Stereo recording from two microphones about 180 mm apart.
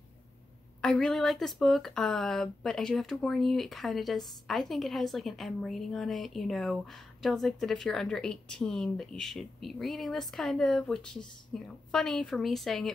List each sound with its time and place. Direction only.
0.7 s speech: 5° left (ahead or behind)